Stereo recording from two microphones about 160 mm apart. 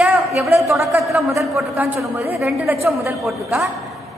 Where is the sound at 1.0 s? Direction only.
Centre (ahead or behind).